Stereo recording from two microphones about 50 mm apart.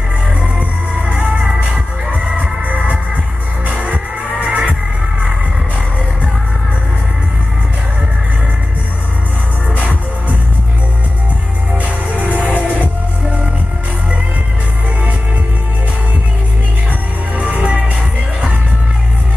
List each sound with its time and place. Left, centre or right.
0.6 s music: right
9.8 s music: right
11.8 s music: right
17.4 s music: right